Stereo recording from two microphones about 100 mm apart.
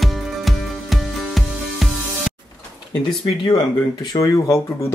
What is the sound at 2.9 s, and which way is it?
Speech, 45° left (ahead or behind).